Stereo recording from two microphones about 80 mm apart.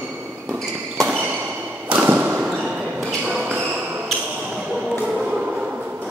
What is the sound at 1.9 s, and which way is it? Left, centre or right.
Thump, centre.